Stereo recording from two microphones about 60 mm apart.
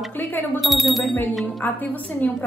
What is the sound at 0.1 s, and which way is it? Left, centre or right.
Speech, left.